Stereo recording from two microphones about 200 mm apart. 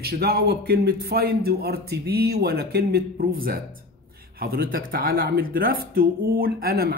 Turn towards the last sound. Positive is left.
turn(degrees=-50)  # may be behind; listen again after turning